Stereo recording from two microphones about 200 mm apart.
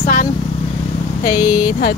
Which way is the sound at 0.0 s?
40° left (ahead or behind).